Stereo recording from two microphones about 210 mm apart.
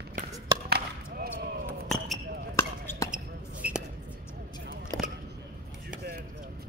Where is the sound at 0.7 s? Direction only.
50° right (ahead or behind).